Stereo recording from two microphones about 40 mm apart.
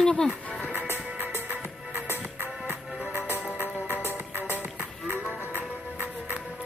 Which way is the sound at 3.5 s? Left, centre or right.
Right.